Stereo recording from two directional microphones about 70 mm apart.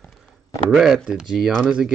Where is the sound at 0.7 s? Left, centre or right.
Centre.